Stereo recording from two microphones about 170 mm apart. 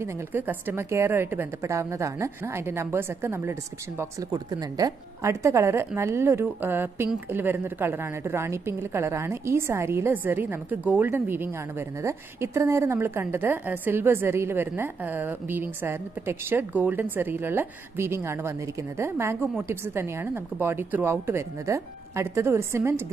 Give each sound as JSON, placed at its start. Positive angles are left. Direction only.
{"t": 0.0, "sound": "a woman's voice", "side_deg": -10}